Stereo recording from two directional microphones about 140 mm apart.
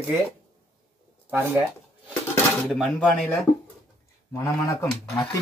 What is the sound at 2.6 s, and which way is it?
Speech, centre (ahead or behind).